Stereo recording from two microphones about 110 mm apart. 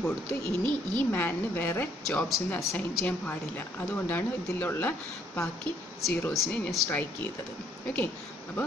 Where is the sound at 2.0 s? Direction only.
5° left (ahead or behind).